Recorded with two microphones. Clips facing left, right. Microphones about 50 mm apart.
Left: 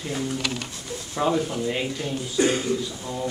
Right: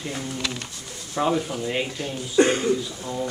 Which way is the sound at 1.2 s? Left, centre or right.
Centre.